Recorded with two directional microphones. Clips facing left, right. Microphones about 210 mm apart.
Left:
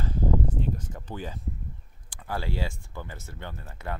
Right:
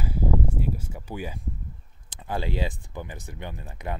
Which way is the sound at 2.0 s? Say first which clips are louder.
Right 3 dB; 20° right (ahead or behind).